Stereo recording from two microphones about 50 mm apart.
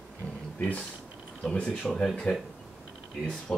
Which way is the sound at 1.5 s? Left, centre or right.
Left.